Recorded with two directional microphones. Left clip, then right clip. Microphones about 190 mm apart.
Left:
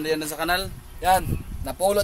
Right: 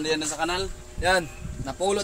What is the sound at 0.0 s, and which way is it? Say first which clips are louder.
A man's voice: left 1 dB; 30° left (ahead or behind).